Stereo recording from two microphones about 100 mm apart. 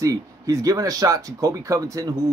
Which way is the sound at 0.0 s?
35° right (ahead or behind).